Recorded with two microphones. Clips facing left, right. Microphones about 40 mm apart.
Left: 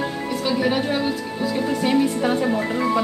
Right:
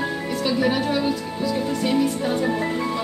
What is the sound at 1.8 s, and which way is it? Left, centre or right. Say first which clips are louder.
Speech: left 3 dB; left.